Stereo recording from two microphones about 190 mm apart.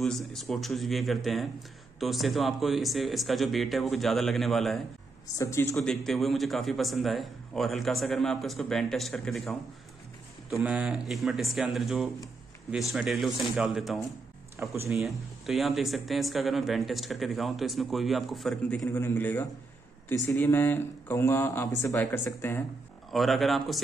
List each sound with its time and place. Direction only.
0.0 s speech: centre (ahead or behind)
5.4 s speech: 15° left (ahead or behind)
5.9 s speech: centre (ahead or behind)
23.1 s speech: centre (ahead or behind)